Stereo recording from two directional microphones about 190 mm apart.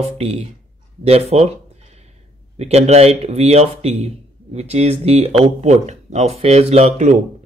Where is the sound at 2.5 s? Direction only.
35° right (ahead or behind).